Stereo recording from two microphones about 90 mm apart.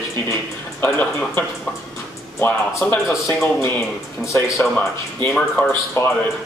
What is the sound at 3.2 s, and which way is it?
Speech, 30° left (ahead or behind).